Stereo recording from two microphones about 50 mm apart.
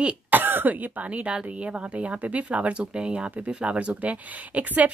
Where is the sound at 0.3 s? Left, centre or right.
Right.